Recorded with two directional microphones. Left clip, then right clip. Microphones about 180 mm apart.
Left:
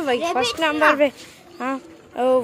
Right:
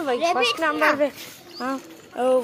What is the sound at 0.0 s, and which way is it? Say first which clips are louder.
A woman's voice: even; 40° left (ahead or behind).